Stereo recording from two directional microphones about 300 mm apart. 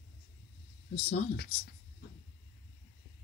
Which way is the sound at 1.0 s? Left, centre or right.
Left.